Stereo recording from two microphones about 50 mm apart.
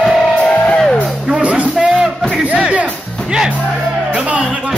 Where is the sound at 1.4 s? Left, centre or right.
Right.